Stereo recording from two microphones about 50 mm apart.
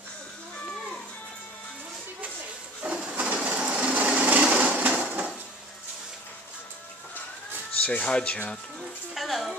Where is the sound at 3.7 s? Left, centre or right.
Right.